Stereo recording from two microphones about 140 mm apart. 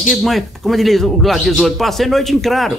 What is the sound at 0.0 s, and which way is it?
Speech, centre (ahead or behind).